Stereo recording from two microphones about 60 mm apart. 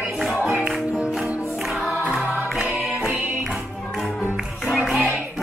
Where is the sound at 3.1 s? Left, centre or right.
Right.